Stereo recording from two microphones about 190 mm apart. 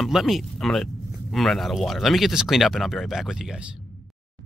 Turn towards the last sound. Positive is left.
turn(degrees=0)  # may be behind; listen again after turning